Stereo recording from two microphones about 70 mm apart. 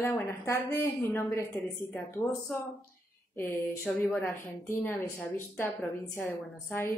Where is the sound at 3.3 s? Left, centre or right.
Left.